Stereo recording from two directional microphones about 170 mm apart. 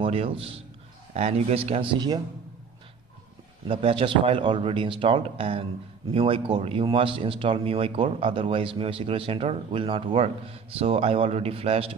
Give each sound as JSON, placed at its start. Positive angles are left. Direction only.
{"t": 0.0, "sound": "a man's voice", "side_deg": -35}
{"t": 3.6, "sound": "speech", "side_deg": -30}